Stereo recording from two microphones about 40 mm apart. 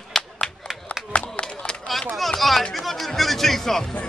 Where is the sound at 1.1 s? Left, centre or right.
Left.